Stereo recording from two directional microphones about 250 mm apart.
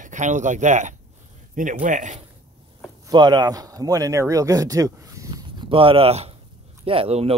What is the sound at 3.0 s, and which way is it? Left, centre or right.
Speech, centre.